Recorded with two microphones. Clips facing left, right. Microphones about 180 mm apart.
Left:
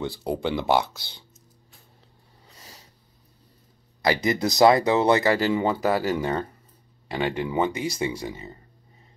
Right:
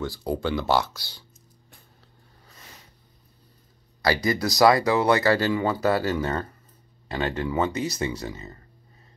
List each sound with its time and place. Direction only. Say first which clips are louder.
0.0 s speech: even; 20° left (ahead or behind)
2.5 s a sound: left 1 dB; 35° left (ahead or behind)
4.0 s speech: left 1 dB; 20° left (ahead or behind)